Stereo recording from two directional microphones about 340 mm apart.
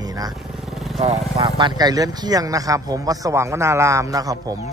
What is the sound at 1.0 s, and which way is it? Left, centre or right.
Speech, centre.